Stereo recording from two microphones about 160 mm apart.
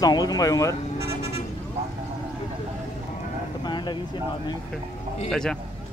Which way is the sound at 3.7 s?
30° left (ahead or behind).